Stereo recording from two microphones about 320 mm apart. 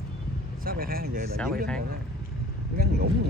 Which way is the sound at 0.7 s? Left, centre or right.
Right.